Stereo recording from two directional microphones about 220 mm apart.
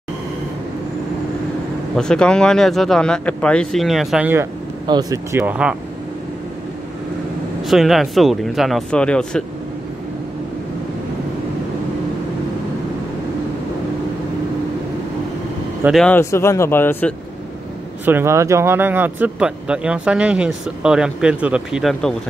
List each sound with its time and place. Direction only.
2.0 s speech: 5° left (ahead or behind); by 5.4 s 15° right (ahead or behind)
5.4 s speech: 5° right (ahead or behind)
7.6 s speech: centre (ahead or behind)
15.8 s speech: centre (ahead or behind)
18.0 s speech: 10° right (ahead or behind)